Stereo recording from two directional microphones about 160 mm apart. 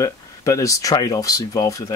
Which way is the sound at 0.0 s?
20° left (ahead or behind).